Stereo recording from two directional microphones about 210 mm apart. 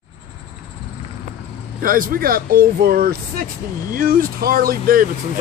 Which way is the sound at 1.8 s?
40° right (ahead or behind).